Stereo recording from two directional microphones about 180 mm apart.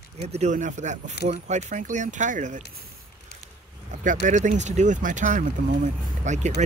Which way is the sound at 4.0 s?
45° right (ahead or behind).